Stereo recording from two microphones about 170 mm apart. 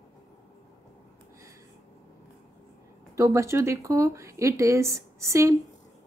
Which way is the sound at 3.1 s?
15° right (ahead or behind).